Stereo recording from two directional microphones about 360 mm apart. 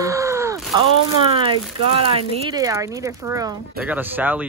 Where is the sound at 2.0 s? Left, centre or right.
Centre.